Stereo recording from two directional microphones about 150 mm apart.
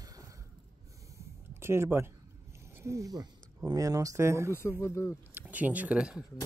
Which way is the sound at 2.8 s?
20° right (ahead or behind).